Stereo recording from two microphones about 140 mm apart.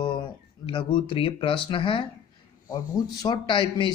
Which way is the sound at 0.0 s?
35° left (ahead or behind).